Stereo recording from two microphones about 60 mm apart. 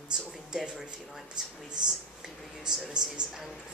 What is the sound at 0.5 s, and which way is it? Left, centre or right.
Speech, centre.